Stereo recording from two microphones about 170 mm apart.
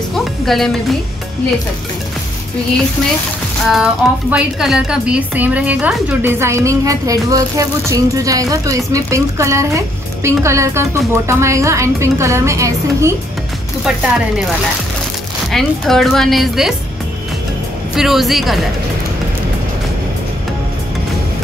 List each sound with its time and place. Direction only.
0.1 s music: centre (ahead or behind)
3.7 s speech: 5° right (ahead or behind)
13.8 s a woman's voice: centre (ahead or behind)
15.5 s a woman's voice: centre (ahead or behind)
17.9 s a woman's voice: centre (ahead or behind)